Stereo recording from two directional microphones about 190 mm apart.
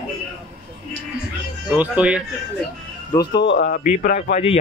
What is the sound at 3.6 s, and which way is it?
Speech, 45° left (ahead or behind).